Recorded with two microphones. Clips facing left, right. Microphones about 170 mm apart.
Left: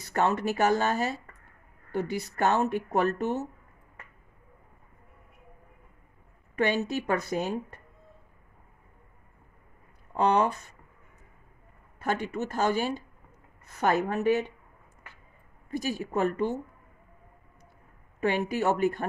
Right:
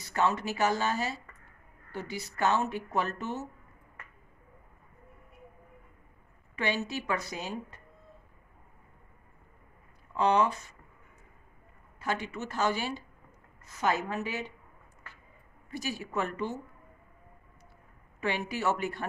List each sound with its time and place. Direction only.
0.0 s speech: 55° left (ahead or behind)
6.5 s a woman's voice: 50° left (ahead or behind)
10.1 s a woman's voice: 50° left (ahead or behind)
12.0 s a woman's voice: 55° left (ahead or behind)
15.7 s a woman's voice: 45° left (ahead or behind)
18.2 s a woman's voice: 50° left (ahead or behind)